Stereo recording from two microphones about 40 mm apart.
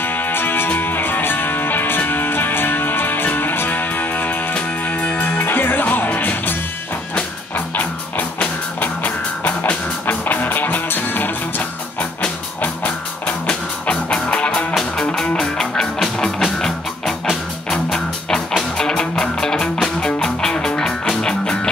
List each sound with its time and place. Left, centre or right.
0.0 s music: left
4.6 s music: left
5.4 s music: left
7.5 s music: left
8.4 s music: left
13.8 s music: left
14.7 s music: centre